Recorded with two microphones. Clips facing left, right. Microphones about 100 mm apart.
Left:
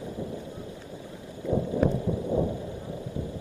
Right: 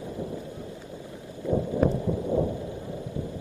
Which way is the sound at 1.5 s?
15° right (ahead or behind).